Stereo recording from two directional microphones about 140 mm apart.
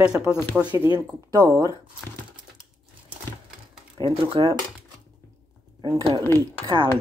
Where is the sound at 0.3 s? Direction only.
20° left (ahead or behind).